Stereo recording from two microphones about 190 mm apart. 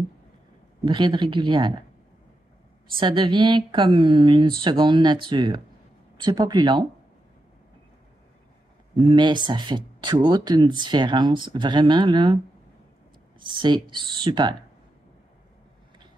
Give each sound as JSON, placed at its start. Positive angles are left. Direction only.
{"t": 0.8, "sound": "speech", "side_deg": -25}
{"t": 2.9, "sound": "speech", "side_deg": -25}
{"t": 9.0, "sound": "speech", "side_deg": -25}
{"t": 13.4, "sound": "speech", "side_deg": -25}